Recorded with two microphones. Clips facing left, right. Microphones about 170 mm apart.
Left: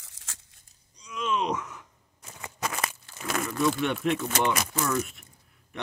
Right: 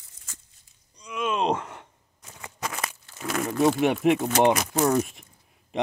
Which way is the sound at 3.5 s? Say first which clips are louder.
Right 6 dB; 60° right (ahead or behind).